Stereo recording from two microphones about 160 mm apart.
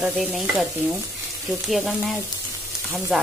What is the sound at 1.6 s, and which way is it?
Frying, centre (ahead or behind).